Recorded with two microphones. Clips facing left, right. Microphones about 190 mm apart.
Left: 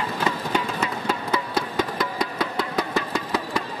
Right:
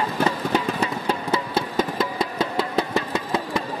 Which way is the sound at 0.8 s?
30° right (ahead or behind).